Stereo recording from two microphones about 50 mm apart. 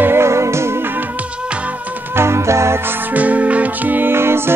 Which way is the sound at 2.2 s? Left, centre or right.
Right.